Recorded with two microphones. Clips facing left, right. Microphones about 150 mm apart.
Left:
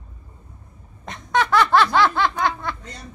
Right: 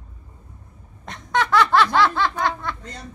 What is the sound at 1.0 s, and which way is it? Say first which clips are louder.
Laughter: left 1 dB; 15° left (ahead or behind).